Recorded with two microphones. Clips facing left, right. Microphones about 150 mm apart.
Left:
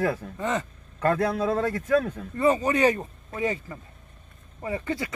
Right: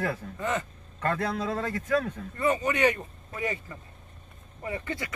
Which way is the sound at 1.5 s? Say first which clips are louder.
Left 5 dB; 45° left (ahead or behind).